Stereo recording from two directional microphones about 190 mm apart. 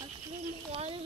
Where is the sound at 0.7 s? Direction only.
30° right (ahead or behind).